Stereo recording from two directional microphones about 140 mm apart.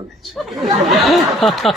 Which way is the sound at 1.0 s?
Centre (ahead or behind).